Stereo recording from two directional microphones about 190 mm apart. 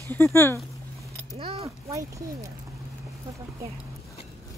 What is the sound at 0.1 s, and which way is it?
Speech, 10° left (ahead or behind).